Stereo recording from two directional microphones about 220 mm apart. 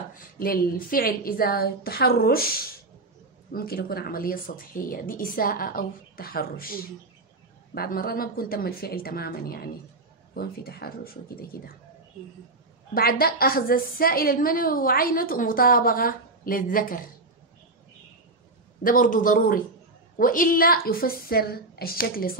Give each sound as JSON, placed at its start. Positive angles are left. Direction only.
{"t": 0.1, "sound": "a woman's voice", "side_deg": 40}
{"t": 3.5, "sound": "a woman's voice", "side_deg": 45}
{"t": 7.7, "sound": "a woman's voice", "side_deg": 40}
{"t": 12.9, "sound": "a woman's voice", "side_deg": 40}
{"t": 18.8, "sound": "a woman's voice", "side_deg": 40}